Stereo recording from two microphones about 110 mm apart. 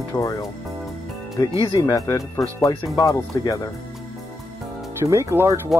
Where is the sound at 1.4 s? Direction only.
35° left (ahead or behind).